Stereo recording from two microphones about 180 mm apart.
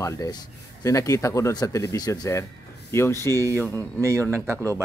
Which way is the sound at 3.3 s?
15° right (ahead or behind).